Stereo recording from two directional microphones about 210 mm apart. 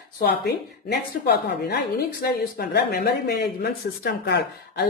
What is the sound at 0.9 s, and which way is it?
Speech, 50° left (ahead or behind).